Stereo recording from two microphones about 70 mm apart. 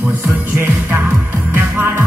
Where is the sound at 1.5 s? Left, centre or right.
Right.